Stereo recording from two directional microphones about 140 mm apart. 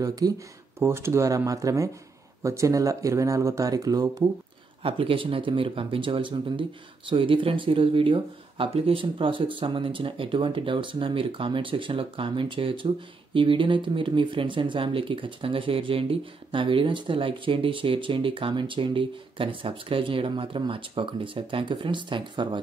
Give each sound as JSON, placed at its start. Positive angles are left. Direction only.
{"t": 0.0, "sound": "speech", "side_deg": -25}
{"t": 4.8, "sound": "speech", "side_deg": -40}